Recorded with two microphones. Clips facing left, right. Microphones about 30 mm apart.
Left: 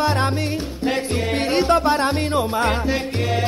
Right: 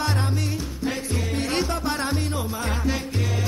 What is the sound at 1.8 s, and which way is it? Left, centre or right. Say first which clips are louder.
Music: left 7 dB; left.